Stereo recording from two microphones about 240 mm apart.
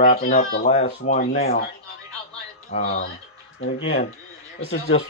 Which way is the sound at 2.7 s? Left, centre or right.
Left.